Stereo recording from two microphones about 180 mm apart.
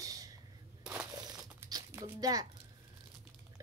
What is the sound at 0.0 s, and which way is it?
Whip, 20° right (ahead or behind).